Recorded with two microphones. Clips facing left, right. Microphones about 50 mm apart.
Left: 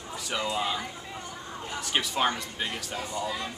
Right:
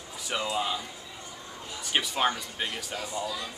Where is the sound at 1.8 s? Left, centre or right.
Centre.